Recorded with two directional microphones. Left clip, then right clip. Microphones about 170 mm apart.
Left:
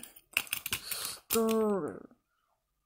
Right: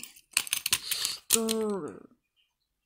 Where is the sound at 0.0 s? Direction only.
15° left (ahead or behind).